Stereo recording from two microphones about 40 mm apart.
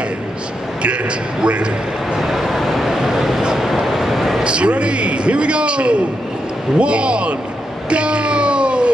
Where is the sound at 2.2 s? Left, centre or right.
Centre.